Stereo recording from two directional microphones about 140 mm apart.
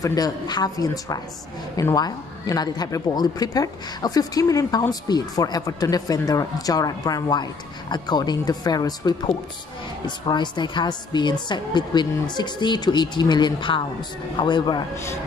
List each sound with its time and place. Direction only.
0.0 s speech: 25° left (ahead or behind)